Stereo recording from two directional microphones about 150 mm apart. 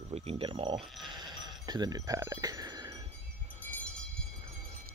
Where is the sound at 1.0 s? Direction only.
30° right (ahead or behind).